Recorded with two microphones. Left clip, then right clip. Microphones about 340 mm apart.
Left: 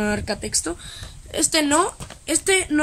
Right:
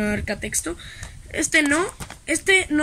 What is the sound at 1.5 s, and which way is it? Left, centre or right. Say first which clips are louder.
Speech: even; left.